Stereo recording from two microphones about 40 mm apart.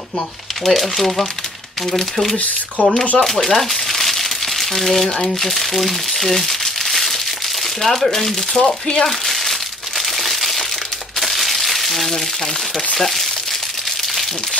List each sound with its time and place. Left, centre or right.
0.7 s speech: centre
2.8 s speech: left
3.2 s speech: centre
9.2 s crumpling: centre